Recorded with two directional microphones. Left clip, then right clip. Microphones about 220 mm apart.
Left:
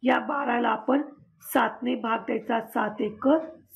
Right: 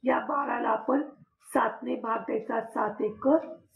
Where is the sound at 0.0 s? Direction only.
50° left (ahead or behind).